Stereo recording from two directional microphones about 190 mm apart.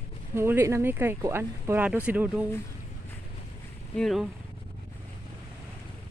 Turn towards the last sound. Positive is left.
turn(degrees=0)  # may be behind; listen again after turning